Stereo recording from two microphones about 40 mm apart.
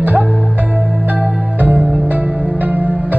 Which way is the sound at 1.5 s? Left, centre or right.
Right.